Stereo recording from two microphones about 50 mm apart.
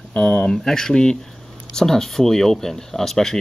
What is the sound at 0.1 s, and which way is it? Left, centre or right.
Speech, left.